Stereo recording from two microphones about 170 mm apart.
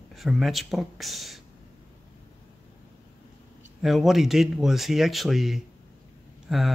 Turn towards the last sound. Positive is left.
turn(degrees=-5)  # may be behind; listen again after turning